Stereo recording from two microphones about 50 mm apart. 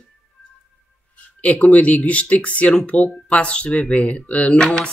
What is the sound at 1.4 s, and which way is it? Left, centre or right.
Speech, left.